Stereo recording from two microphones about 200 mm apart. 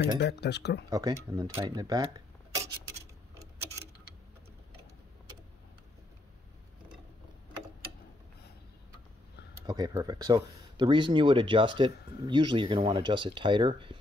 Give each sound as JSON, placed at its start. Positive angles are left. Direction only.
{"t": 0.2, "sound": "speech", "side_deg": 55}
{"t": 0.8, "sound": "speech", "side_deg": -20}
{"t": 9.5, "sound": "speech", "side_deg": -20}